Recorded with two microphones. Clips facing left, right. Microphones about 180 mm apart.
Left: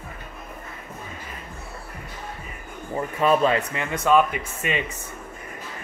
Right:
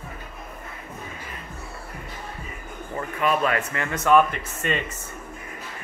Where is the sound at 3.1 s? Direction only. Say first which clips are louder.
Left 3 dB; 30° left (ahead or behind); by 4.8 s 10° left (ahead or behind).